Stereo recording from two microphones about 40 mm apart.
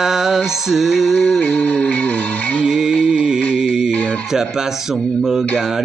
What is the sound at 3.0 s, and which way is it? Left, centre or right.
Music, centre.